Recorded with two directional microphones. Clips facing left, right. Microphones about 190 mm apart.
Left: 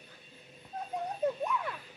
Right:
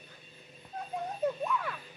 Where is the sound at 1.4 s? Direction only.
20° left (ahead or behind).